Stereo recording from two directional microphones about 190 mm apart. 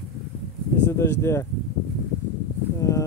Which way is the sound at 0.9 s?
15° left (ahead or behind).